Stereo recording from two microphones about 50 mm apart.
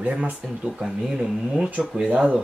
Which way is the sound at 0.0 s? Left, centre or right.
Right.